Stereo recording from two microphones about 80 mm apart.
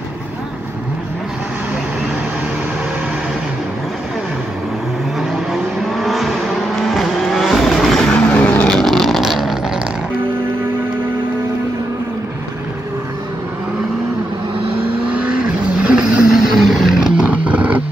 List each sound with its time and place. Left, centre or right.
5.2 s vehicle: centre
8.1 s vehicle: centre
8.7 s vehicle: centre
15.8 s vehicle: centre